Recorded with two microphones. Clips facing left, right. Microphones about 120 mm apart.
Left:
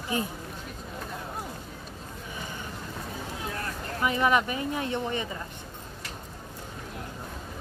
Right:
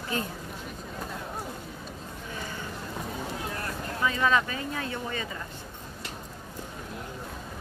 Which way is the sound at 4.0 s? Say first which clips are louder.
Left 1 dB; 20° left (ahead or behind).